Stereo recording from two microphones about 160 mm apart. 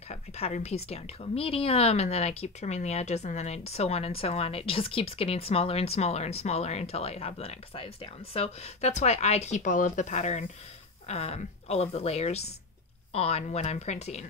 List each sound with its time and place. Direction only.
0.1 s a woman's voice: 45° left (ahead or behind)